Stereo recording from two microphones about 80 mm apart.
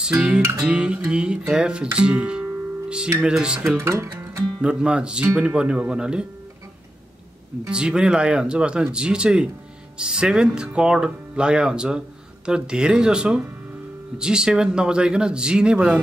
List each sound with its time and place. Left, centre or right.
0.0 s speech: centre
3.7 s speech: right
4.6 s speech: centre
7.7 s speech: centre